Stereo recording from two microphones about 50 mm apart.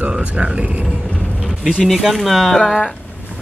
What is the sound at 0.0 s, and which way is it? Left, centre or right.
Speech, right.